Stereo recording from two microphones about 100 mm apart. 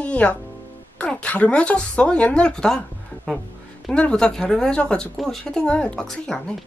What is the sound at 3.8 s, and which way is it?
Speech, 10° left (ahead or behind).